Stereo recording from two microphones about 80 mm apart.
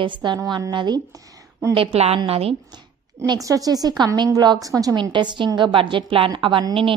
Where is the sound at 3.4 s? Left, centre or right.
Right.